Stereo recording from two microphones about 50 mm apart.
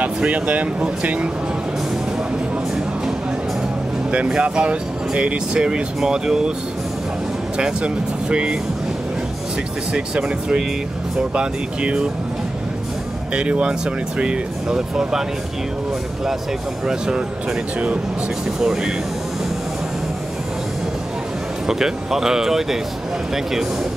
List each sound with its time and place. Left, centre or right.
0.0 s speech: right
4.3 s speech: right
7.5 s speech: centre
9.9 s speech: centre
13.3 s speech: centre
16.8 s speech: centre
18.6 s speech: centre
21.6 s speech: centre